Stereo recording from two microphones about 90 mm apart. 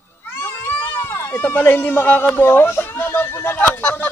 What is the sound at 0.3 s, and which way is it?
Cat, 25° left (ahead or behind).